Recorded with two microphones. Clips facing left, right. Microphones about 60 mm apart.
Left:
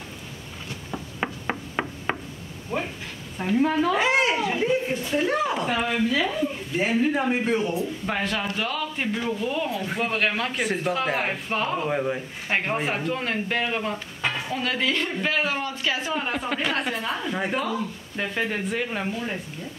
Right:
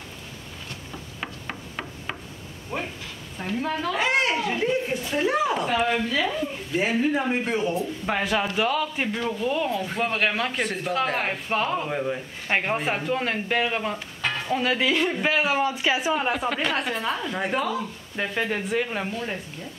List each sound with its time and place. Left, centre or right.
0.9 s a sound: left
2.7 s a woman's voice: centre
12.4 s a woman's voice: centre
16.3 s a woman's voice: centre